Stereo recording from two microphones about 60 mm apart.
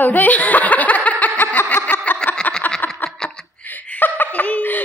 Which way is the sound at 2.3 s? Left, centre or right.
Left.